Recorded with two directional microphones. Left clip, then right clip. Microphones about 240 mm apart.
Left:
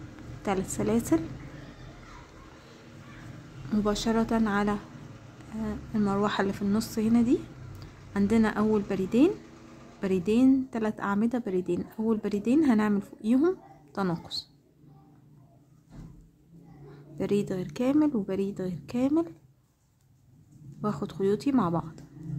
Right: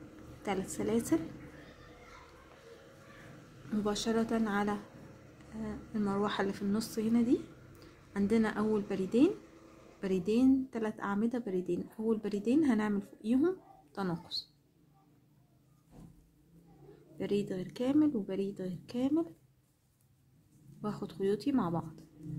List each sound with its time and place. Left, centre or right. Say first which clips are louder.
0.4 s a woman's voice: left 6 dB; centre
3.7 s a woman's voice: left 5 dB; centre
17.2 s a woman's voice: left 6 dB; centre
20.8 s a woman's voice: left 6 dB; centre